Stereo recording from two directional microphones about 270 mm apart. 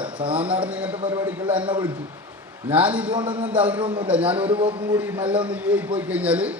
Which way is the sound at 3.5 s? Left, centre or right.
Centre.